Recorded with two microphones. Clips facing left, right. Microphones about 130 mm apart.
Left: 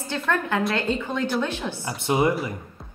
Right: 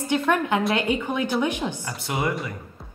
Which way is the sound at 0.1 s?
15° right (ahead or behind).